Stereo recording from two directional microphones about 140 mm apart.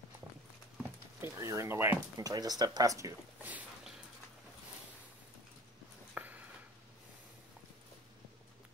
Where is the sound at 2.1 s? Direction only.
25° right (ahead or behind).